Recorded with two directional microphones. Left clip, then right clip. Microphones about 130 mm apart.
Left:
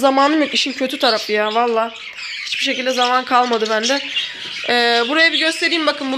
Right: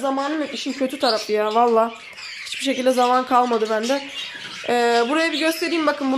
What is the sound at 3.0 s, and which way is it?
Speech, 10° right (ahead or behind).